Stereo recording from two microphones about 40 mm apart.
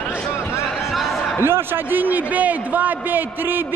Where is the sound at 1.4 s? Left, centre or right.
Right.